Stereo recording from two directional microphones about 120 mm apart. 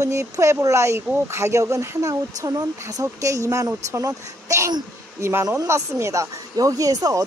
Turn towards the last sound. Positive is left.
turn(degrees=-30)  # may be behind; listen again after turning